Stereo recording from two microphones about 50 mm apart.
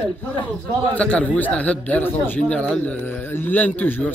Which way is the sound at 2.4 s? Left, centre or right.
Left.